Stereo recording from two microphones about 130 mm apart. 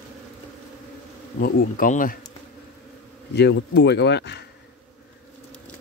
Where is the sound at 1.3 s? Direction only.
90° left.